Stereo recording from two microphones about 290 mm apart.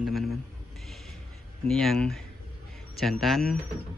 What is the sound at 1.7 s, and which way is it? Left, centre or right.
Speech, centre.